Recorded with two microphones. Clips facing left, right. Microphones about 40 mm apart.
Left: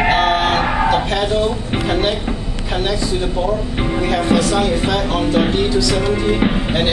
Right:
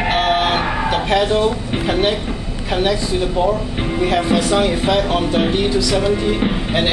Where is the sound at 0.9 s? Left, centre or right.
Centre.